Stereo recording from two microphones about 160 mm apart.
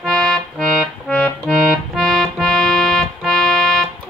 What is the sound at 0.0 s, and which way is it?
Accordion, centre (ahead or behind).